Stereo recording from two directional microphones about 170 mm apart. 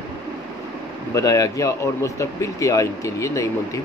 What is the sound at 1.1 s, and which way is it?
Speech, 20° left (ahead or behind).